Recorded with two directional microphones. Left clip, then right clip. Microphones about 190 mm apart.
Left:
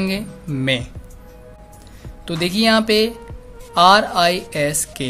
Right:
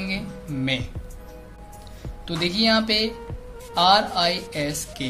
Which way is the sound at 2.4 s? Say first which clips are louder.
Left 4 dB; 45° left (ahead or behind).